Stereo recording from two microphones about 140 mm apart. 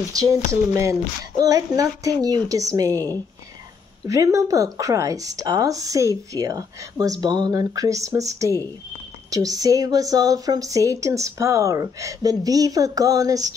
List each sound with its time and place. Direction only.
0.1 s speech: 25° right (ahead or behind)
1.4 s speech: 25° right (ahead or behind)